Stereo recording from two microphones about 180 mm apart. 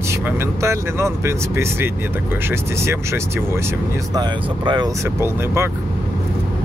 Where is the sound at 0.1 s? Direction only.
15° right (ahead or behind).